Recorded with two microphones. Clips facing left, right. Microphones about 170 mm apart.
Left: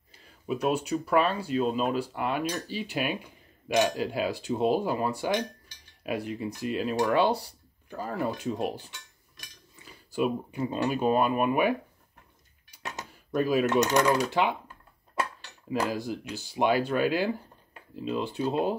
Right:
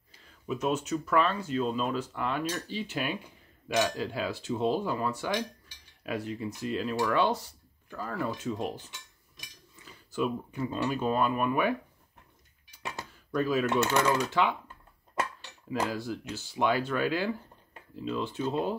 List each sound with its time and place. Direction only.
0.2 s speech: 10° left (ahead or behind)
1.1 s cutlery: 10° left (ahead or behind)
9.8 s a sound: 15° left (ahead or behind)
10.6 s cutlery: 15° left (ahead or behind)
12.9 s a sound: 20° left (ahead or behind)
13.7 s cutlery: 15° left (ahead or behind)
15.7 s cutlery: 15° left (ahead or behind)
17.7 s speech: 15° left (ahead or behind)